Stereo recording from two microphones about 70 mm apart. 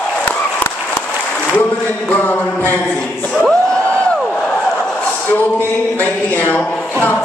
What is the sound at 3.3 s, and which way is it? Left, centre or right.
Crowd, centre.